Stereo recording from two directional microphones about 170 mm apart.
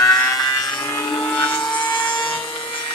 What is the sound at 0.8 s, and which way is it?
Vehicle, 15° left (ahead or behind).